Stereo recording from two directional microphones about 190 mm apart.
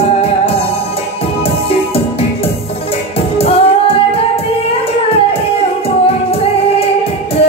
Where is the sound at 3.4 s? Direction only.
30° left (ahead or behind).